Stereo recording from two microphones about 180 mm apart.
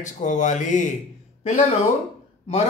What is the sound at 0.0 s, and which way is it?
Speech, 45° left (ahead or behind).